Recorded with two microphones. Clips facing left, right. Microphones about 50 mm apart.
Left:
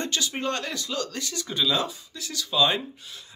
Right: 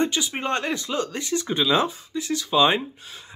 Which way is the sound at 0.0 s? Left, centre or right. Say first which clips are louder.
Right 4 dB; centre.